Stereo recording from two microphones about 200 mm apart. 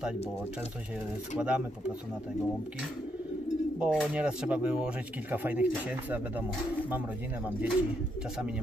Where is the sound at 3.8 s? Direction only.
5° right (ahead or behind).